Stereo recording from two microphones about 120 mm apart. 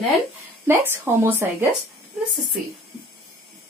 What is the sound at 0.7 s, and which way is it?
A woman's voice, 20° right (ahead or behind).